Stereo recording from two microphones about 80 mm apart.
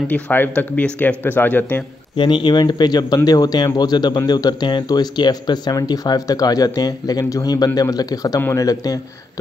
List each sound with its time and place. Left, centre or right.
0.1 s speech: left
2.1 s speech: left